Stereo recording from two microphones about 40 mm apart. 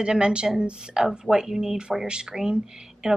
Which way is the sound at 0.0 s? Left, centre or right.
Right.